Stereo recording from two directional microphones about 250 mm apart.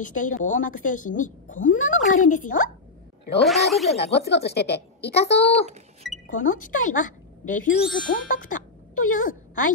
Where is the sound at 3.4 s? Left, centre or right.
Centre.